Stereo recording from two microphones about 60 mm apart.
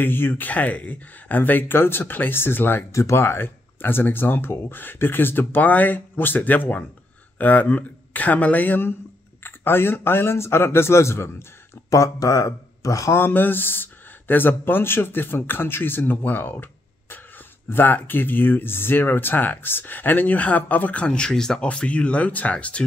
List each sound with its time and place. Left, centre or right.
0.0 s speech: left
2.9 s speech: left
11.9 s speech: left
13.1 s speech: left
17.6 s speech: left